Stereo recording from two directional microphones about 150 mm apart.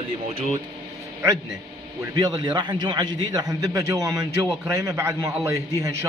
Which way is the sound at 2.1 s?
30° right (ahead or behind).